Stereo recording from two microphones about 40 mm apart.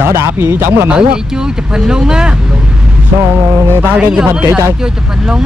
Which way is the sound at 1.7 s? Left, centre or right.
Centre.